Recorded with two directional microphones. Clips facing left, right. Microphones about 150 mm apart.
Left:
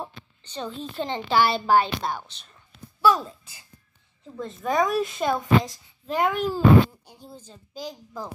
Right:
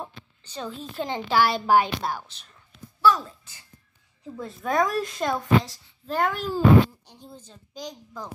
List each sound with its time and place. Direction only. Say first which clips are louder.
0.4 s a woman's voice: left 2 dB; 5° right (ahead or behind)
3.0 s a sound: even; 25° left (ahead or behind)
4.2 s a woman's voice: left 1 dB; 5° right (ahead or behind)